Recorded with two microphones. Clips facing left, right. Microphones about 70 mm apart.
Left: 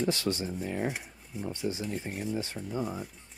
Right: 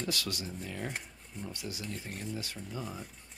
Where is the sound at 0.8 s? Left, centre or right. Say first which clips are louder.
Left 6 dB; centre.